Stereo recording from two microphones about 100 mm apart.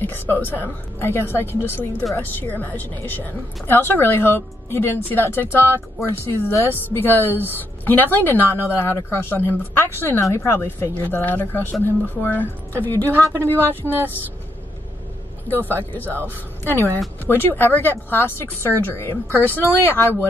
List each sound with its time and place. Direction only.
0.0 s a woman's voice: 20° left (ahead or behind)
13.7 s speech: 20° right (ahead or behind)
15.6 s a woman's voice: 20° left (ahead or behind)